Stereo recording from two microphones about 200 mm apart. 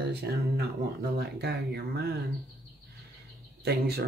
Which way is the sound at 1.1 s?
55° right (ahead or behind).